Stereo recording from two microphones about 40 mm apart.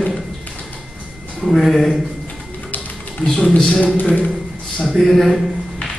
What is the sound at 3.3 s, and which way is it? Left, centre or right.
Speech, centre.